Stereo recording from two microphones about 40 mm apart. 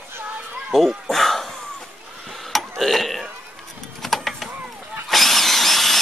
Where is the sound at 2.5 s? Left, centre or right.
Centre.